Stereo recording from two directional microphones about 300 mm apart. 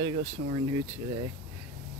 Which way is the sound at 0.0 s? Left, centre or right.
Right.